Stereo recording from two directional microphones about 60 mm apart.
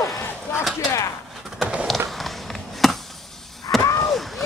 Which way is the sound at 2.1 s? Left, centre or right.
Centre.